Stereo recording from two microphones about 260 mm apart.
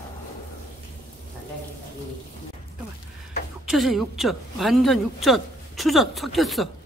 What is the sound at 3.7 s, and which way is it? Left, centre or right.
Speech, centre.